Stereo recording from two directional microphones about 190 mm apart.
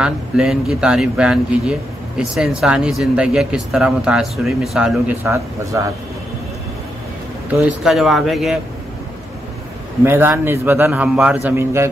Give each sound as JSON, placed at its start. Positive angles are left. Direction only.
{"t": 0.0, "sound": "speech", "side_deg": -5}
{"t": 5.2, "sound": "a man's voice", "side_deg": -15}
{"t": 7.5, "sound": "speech", "side_deg": -5}
{"t": 10.0, "sound": "a man's voice", "side_deg": -10}